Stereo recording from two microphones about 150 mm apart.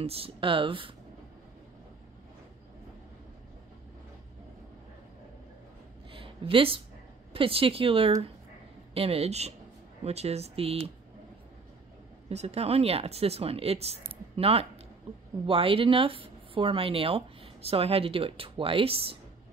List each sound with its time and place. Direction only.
0.0 s speech: 40° right (ahead or behind)
6.1 s a sound: 35° right (ahead or behind)
7.3 s speech: 35° right (ahead or behind)
12.3 s speech: 45° right (ahead or behind)